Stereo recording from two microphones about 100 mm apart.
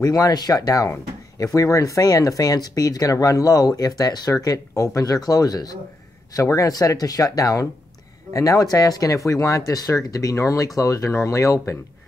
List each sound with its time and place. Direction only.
0.0 s speech: 40° left (ahead or behind)